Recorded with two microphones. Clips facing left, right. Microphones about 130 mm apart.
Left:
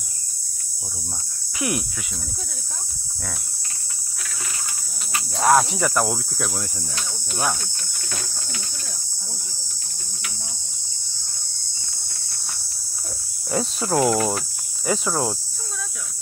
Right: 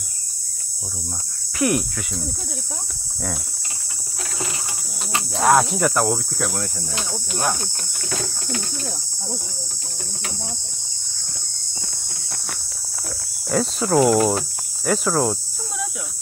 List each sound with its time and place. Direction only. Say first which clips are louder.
1.6 s speech: right 6 dB; centre (ahead or behind)
5.3 s speech: right 1 dB; centre (ahead or behind)
13.5 s speech: right 3 dB; centre (ahead or behind)
14.1 s speech: right 5 dB; 20° right (ahead or behind)
14.9 s speech: right 3 dB; centre (ahead or behind)